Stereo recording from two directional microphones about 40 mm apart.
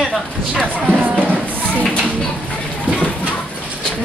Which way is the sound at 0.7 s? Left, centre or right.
Right.